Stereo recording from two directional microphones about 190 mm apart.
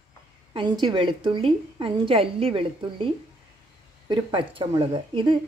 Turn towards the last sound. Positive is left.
turn(degrees=-25)  # may be behind; listen again after turning